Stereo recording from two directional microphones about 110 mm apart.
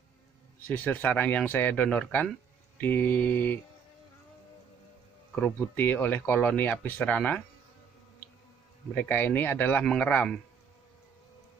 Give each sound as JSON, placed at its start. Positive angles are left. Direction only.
{"t": 0.7, "sound": "speech", "side_deg": 15}
{"t": 5.4, "sound": "speech", "side_deg": 15}
{"t": 8.9, "sound": "speech", "side_deg": 20}